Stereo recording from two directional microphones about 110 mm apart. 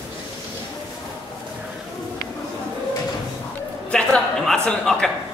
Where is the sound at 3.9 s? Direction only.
5° left (ahead or behind).